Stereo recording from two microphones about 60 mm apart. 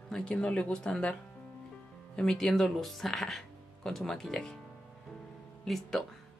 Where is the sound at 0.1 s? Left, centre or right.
Centre.